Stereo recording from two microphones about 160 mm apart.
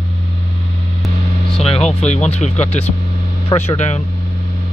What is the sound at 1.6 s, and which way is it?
Speech, 40° left (ahead or behind).